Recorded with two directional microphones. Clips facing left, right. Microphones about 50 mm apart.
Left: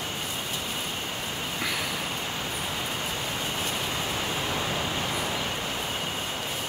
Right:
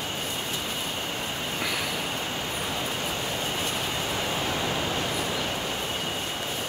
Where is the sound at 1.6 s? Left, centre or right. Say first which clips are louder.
Even; centre.